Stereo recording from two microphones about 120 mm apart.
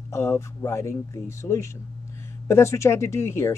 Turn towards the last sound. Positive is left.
turn(degrees=20)  # may be behind; listen again after turning